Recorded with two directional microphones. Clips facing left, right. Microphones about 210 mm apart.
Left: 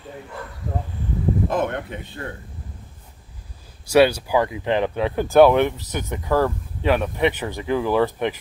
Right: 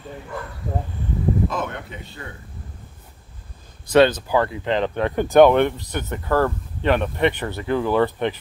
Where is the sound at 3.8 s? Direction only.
10° left (ahead or behind).